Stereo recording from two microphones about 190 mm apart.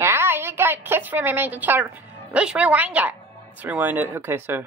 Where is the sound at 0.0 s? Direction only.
15° right (ahead or behind).